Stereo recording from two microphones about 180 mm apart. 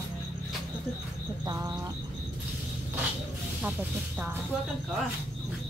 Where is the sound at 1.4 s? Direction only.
20° right (ahead or behind).